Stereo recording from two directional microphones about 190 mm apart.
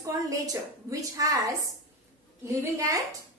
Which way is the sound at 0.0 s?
20° right (ahead or behind).